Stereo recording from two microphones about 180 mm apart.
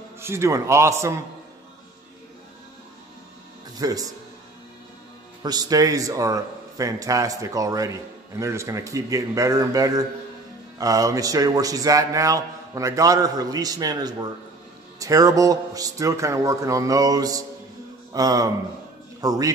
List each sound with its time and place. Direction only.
0.2 s a man's voice: 15° right (ahead or behind)
3.7 s a man's voice: 20° right (ahead or behind)
5.4 s a man's voice: 20° right (ahead or behind)